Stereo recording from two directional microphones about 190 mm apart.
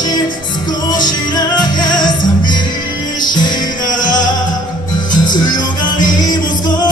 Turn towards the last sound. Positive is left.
turn(degrees=20)  # may be behind; listen again after turning